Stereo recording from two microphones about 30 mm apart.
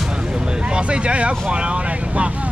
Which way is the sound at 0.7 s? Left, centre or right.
Right.